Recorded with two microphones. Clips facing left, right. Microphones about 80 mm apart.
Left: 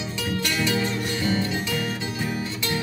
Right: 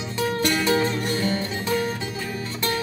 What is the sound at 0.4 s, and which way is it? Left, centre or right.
Music, right.